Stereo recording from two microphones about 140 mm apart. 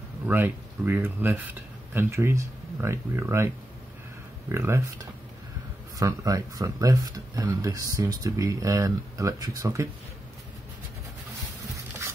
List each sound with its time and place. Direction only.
0.3 s speech: 15° right (ahead or behind)